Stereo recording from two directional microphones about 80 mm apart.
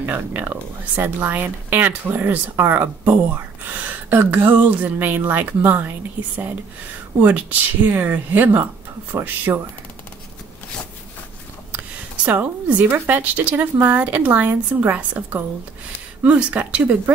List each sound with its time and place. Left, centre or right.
0.0 s speech: right
12.3 s speech: centre